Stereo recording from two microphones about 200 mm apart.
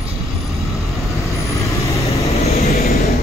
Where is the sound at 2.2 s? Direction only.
30° left (ahead or behind).